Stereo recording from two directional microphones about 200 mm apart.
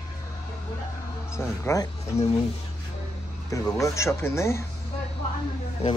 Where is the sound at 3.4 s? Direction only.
15° left (ahead or behind).